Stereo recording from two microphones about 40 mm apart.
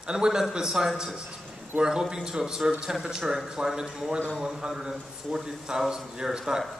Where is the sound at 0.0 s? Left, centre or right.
Right.